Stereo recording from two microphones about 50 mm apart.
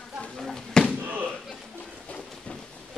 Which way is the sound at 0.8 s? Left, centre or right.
Centre.